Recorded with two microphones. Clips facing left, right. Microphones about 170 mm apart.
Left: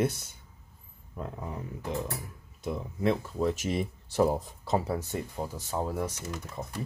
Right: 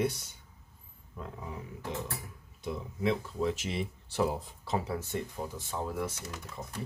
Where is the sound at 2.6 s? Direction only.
45° left (ahead or behind).